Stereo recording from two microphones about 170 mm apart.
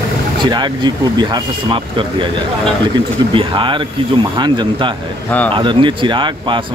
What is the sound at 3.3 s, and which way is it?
Speech, 30° right (ahead or behind).